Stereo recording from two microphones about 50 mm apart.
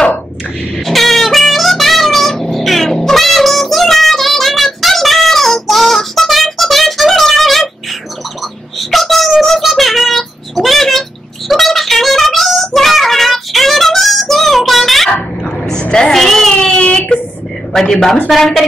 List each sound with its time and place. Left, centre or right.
0.8 s music: centre
8.7 s child singing: centre
15.4 s a sound: centre
17.7 s a woman's voice: centre